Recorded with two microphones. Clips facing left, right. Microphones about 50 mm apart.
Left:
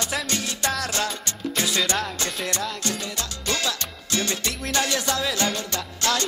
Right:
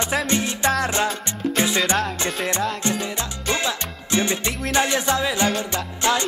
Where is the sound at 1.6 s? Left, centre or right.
Centre.